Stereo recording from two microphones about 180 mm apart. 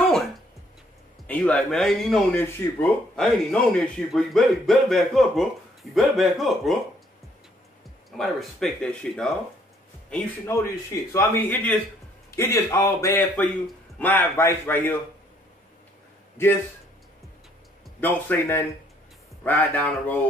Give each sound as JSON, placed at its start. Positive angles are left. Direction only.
{"t": 0.0, "sound": "music", "side_deg": 0}
{"t": 1.2, "sound": "a man's voice", "side_deg": 5}
{"t": 8.2, "sound": "a man's voice", "side_deg": 0}
{"t": 18.0, "sound": "a man's voice", "side_deg": 10}